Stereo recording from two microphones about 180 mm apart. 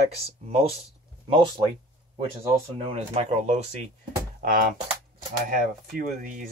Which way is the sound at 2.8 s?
35° right (ahead or behind).